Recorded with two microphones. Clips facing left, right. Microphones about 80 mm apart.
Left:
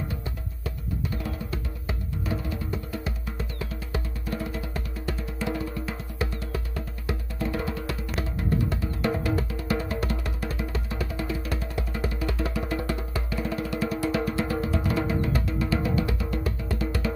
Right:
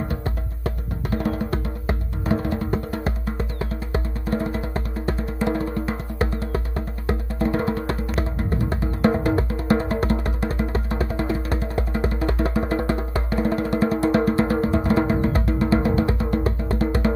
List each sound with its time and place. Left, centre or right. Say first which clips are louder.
0.1 s music: right 6 dB; right